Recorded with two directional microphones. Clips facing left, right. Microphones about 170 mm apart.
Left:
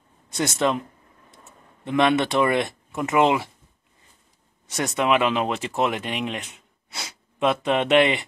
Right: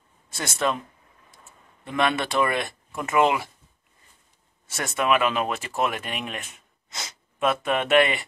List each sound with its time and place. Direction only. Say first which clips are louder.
0.6 s speech: left 2 dB; 20° left (ahead or behind)
1.9 s speech: left 5 dB; 20° left (ahead or behind)
4.6 s speech: left 2 dB; 20° left (ahead or behind)